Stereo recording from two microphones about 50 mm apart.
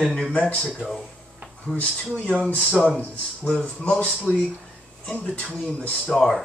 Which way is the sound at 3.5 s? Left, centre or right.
Left.